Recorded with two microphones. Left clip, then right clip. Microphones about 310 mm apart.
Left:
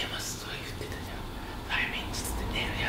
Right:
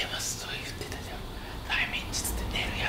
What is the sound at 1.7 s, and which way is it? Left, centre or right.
Vehicle, centre.